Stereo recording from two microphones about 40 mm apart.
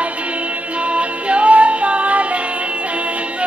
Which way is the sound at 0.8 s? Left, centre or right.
Right.